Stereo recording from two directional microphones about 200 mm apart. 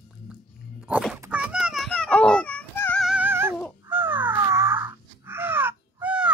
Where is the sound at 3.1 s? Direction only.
10° right (ahead or behind).